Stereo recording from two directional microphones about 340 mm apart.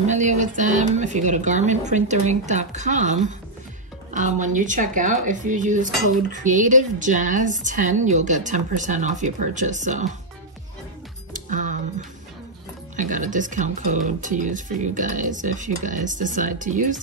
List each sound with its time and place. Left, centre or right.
0.0 s speech: right
11.3 s music: right
12.9 s speech: right